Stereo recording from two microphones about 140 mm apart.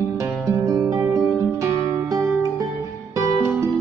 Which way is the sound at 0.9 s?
20° right (ahead or behind).